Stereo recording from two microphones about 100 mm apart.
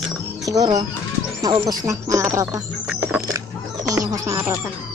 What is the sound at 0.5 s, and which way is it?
Speech, 40° right (ahead or behind).